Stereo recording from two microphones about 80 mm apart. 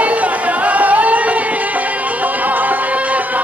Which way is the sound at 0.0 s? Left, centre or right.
Centre.